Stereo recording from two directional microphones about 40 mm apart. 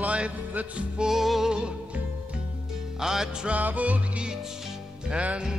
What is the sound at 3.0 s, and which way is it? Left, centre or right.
Music, centre.